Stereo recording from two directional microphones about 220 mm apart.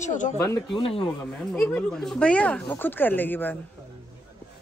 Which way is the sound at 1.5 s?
5° left (ahead or behind).